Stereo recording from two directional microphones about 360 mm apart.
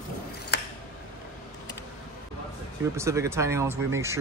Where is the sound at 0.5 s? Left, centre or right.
Left.